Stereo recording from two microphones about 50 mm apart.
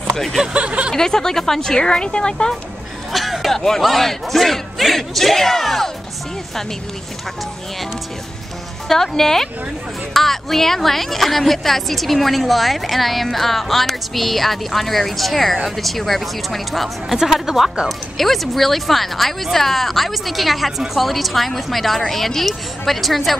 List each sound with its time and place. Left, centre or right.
0.4 s speech: centre
0.9 s a woman's voice: centre
3.1 s speech: centre
8.8 s a woman's voice: centre
17.8 s speech: centre